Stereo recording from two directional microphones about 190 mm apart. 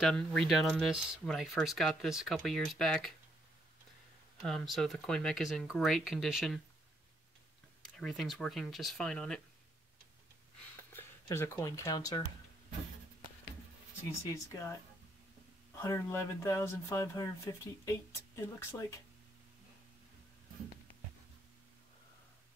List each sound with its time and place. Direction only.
0.0 s speech: 5° left (ahead or behind)
4.5 s speech: centre (ahead or behind)
7.8 s speech: centre (ahead or behind)
10.9 s speech: 10° left (ahead or behind)
14.3 s speech: 15° left (ahead or behind)
15.8 s speech: 15° left (ahead or behind)
18.3 s speech: 15° left (ahead or behind)